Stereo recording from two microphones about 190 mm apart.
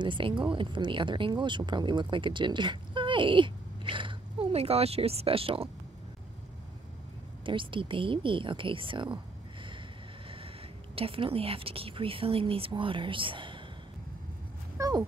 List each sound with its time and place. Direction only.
0.0 s speech: 25° right (ahead or behind)
7.4 s speech: 25° right (ahead or behind)
11.0 s speech: 30° right (ahead or behind)
14.8 s dog: 20° right (ahead or behind)